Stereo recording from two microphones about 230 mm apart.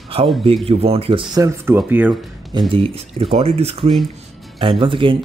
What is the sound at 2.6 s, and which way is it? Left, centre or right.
Speech, right.